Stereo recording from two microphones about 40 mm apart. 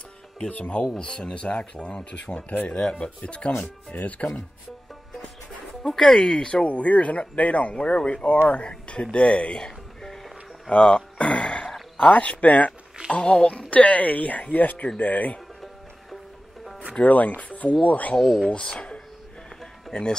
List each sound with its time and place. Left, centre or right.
0.4 s speech: left
3.5 s speech: left
5.9 s speech: centre
6.7 s speech: left
9.7 s music: centre
10.7 s a sound: left
12.1 s speech: left
13.2 s speech: centre
13.5 s speech: left
16.9 s speech: left
18.2 s speech: centre
18.5 s speech: left
19.9 s speech: centre